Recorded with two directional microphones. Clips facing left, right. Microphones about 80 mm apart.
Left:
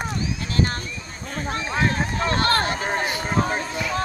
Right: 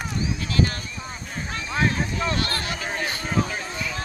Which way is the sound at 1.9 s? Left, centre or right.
Left.